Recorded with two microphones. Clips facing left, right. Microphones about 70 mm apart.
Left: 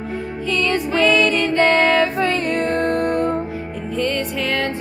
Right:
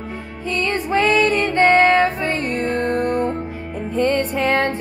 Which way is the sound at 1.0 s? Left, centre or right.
Right.